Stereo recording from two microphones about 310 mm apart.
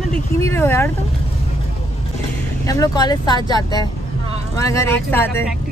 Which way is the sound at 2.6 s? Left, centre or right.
Centre.